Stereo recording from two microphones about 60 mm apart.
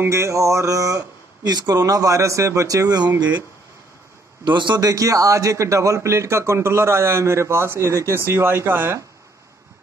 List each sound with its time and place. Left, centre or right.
0.0 s a sound: right
1.5 s speech: right
3.1 s speech: right
4.7 s speech: right